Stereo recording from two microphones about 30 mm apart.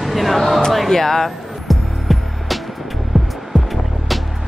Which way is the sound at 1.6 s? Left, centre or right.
Centre.